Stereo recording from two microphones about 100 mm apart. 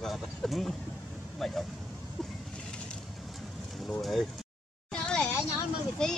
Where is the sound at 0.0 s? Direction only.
Centre (ahead or behind).